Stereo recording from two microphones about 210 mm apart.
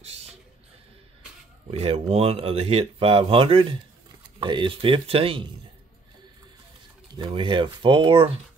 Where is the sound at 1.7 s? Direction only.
30° right (ahead or behind).